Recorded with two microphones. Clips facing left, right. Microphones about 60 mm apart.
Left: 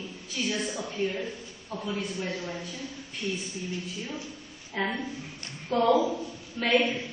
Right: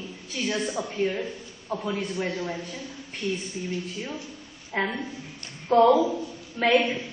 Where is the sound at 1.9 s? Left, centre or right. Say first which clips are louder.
Right 4 dB; right.